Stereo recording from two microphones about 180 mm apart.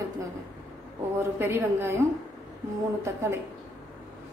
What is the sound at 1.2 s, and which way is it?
Speech, 15° right (ahead or behind).